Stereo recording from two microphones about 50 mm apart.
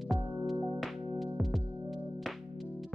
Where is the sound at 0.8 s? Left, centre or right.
Centre.